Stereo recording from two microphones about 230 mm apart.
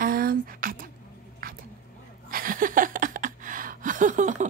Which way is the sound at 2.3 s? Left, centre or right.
Right.